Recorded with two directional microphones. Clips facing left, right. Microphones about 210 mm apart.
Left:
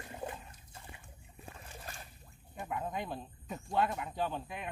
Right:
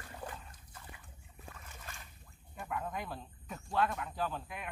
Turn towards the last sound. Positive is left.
turn(degrees=25)  # may be behind; listen again after turning